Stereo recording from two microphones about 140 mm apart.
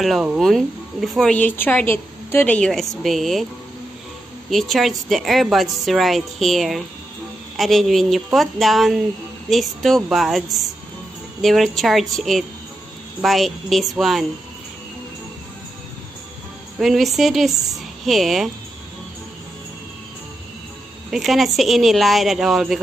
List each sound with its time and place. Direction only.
0.0 s speech: 5° right (ahead or behind)
4.5 s speech: centre (ahead or behind)
16.8 s speech: centre (ahead or behind)
21.1 s speech: centre (ahead or behind)